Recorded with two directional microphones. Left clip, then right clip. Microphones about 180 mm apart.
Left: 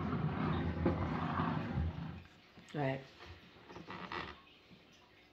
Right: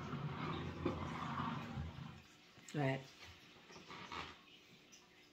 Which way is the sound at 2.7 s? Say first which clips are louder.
Left 2 dB; 15° right (ahead or behind).